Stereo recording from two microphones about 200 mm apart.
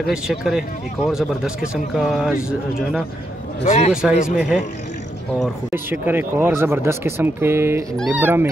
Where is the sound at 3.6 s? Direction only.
30° left (ahead or behind).